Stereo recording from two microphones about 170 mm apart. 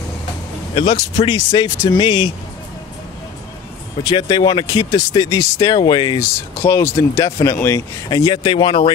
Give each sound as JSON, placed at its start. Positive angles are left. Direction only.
{"t": 0.7, "sound": "speech", "side_deg": 25}
{"t": 4.0, "sound": "speech", "side_deg": 25}